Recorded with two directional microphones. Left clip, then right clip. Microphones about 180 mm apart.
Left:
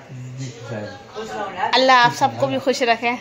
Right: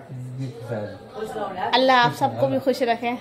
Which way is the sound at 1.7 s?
Centre (ahead or behind).